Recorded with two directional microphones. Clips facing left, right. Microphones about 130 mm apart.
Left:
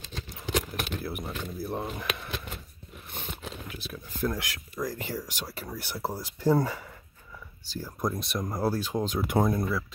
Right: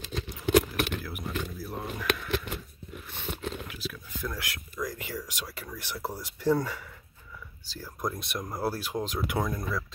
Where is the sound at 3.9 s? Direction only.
35° left (ahead or behind).